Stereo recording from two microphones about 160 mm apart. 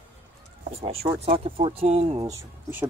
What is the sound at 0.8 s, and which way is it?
Speech, 40° right (ahead or behind).